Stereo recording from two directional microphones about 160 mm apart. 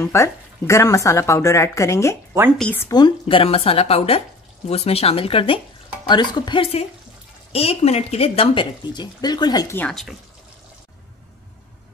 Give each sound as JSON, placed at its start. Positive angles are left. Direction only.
{"t": 0.0, "sound": "speech", "side_deg": 20}
{"t": 2.9, "sound": "speech", "side_deg": 30}
{"t": 9.8, "sound": "speech", "side_deg": 5}